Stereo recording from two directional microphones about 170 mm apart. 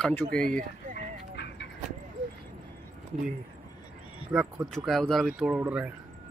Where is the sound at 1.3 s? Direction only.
90° left.